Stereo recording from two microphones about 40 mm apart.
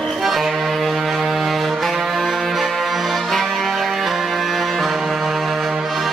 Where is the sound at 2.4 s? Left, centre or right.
Centre.